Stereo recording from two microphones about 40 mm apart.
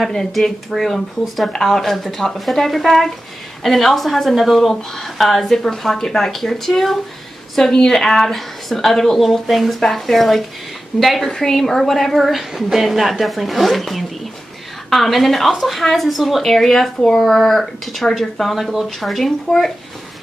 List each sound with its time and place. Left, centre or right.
0.7 s a woman's voice: centre
11.2 s a woman's voice: centre